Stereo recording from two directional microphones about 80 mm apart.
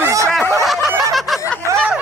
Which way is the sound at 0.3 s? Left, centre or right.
Centre.